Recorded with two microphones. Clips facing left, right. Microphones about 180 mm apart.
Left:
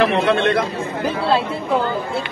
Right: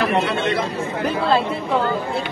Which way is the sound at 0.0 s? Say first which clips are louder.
Left 4 dB; 55° left (ahead or behind).